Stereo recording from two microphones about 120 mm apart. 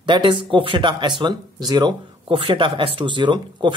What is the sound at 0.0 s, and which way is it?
Speech, 40° right (ahead or behind).